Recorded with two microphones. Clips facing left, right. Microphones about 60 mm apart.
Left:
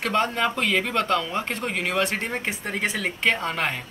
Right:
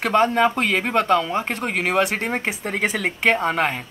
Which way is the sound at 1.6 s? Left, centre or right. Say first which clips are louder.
Right 6 dB; right.